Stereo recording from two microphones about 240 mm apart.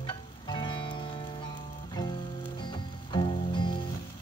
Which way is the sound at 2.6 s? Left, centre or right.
Centre.